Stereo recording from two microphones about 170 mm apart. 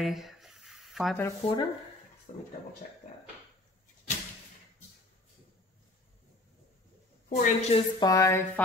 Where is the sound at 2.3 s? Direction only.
45° left (ahead or behind).